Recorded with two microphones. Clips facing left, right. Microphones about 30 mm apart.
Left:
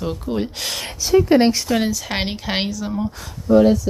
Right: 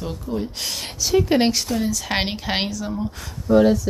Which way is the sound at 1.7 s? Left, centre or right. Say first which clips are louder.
Left 4 dB; left.